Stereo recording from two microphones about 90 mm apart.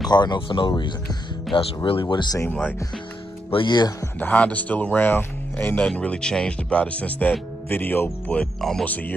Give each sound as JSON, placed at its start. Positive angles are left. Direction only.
{"t": 0.1, "sound": "speech", "side_deg": 55}
{"t": 1.5, "sound": "speech", "side_deg": 80}
{"t": 3.5, "sound": "speech", "side_deg": 55}
{"t": 4.2, "sound": "speech", "side_deg": 15}
{"t": 8.5, "sound": "speech", "side_deg": 5}
{"t": 8.8, "sound": "speech", "side_deg": 20}